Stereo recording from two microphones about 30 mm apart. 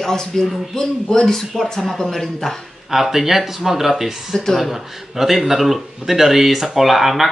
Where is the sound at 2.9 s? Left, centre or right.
Centre.